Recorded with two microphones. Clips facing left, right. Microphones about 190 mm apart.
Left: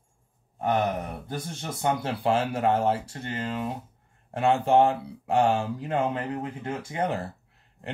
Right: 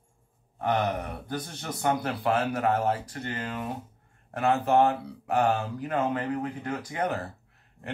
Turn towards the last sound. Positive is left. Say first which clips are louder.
# left 1 dB
turn(degrees=30)  # may be behind; listen again after turning